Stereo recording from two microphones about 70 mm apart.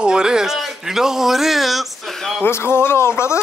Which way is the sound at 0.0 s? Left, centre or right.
Centre.